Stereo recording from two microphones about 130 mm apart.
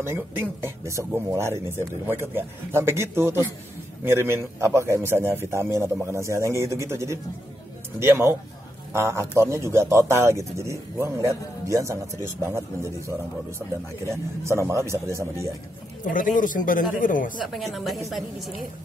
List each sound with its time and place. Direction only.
0.0 s speech: 20° right (ahead or behind)
16.0 s a man's voice: 90° left
17.5 s a woman's voice: centre (ahead or behind)